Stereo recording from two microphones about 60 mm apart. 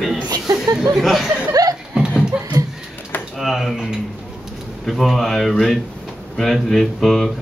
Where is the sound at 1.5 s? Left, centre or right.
Right.